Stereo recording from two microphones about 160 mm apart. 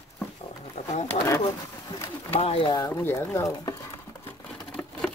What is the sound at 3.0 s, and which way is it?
Speech, 15° left (ahead or behind).